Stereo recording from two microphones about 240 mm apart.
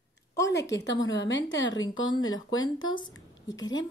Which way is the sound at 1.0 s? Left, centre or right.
Left.